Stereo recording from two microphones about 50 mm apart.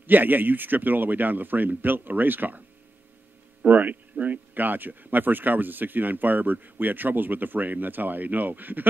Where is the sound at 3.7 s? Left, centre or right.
Right.